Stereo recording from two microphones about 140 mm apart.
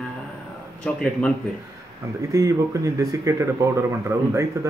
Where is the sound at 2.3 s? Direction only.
20° right (ahead or behind).